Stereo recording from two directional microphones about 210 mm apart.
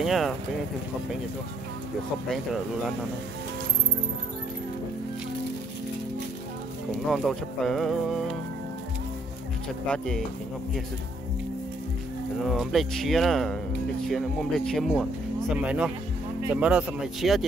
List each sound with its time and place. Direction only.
0.0 s speech: centre (ahead or behind)
2.2 s speech: centre (ahead or behind)
7.1 s speech: centre (ahead or behind)
9.8 s speech: 5° left (ahead or behind)
12.4 s speech: centre (ahead or behind)